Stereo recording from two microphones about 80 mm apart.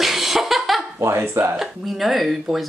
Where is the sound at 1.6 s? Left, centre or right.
Centre.